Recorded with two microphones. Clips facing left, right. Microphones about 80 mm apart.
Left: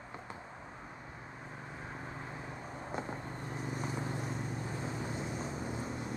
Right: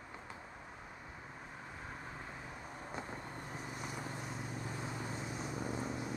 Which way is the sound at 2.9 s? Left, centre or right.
Centre.